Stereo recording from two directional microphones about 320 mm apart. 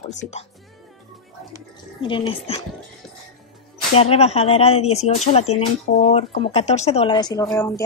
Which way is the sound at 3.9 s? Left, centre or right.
Centre.